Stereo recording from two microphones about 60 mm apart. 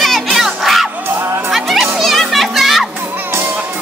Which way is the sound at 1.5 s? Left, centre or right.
Centre.